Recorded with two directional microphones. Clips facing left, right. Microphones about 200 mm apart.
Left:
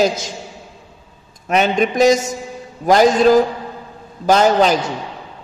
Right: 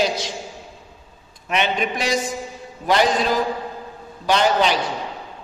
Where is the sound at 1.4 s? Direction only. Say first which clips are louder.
Left 6 dB; 40° left (ahead or behind).